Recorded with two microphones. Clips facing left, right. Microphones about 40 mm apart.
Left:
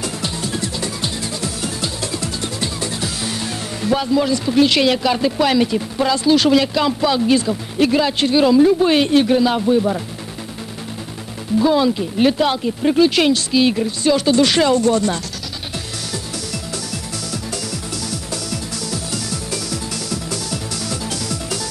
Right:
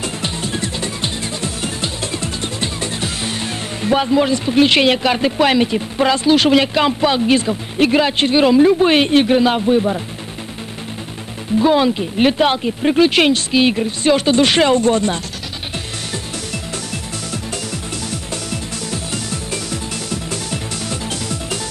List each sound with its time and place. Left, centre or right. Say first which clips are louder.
0.0 s music: right 1 dB; right
5.9 s speech: right 2 dB; right
11.6 s speech: right 2 dB; right
18.3 s music: right 1 dB; right